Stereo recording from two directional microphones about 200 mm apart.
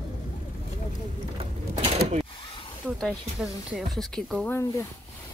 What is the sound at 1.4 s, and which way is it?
Mechanisms, 30° right (ahead or behind).